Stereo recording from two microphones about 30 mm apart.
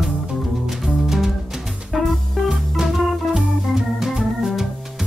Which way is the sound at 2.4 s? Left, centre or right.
Centre.